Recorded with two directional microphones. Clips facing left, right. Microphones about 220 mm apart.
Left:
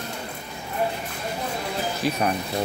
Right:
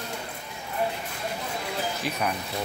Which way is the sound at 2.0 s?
40° left (ahead or behind).